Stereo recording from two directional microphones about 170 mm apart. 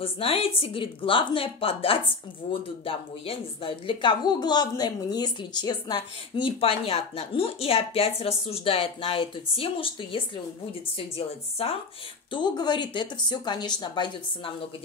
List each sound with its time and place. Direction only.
0.0 s a woman's voice: 35° left (ahead or behind)